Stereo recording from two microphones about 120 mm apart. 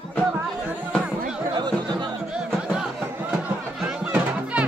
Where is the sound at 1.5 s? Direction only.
40° right (ahead or behind).